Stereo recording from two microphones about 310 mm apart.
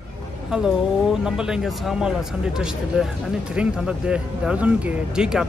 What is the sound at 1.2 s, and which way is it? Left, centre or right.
Speech, centre.